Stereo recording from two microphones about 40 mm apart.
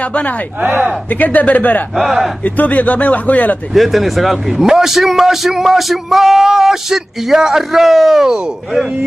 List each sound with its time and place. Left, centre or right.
0.6 s speech: right
1.1 s speech: left
2.0 s speech: centre
2.4 s speech: left
3.7 s a man's voice: centre